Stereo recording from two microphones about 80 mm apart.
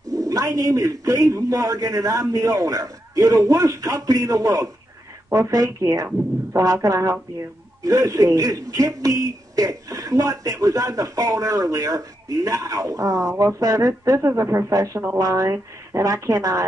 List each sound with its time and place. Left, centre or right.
0.1 s a woman's voice: right